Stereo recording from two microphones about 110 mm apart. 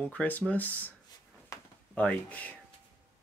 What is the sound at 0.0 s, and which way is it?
Speech, 15° left (ahead or behind).